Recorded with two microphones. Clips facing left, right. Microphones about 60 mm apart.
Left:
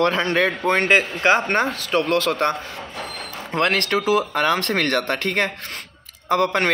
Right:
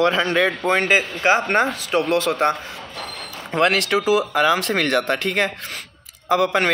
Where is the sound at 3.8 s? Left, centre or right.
Centre.